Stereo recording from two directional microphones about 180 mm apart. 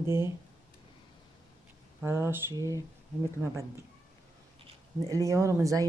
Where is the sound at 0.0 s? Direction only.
15° right (ahead or behind).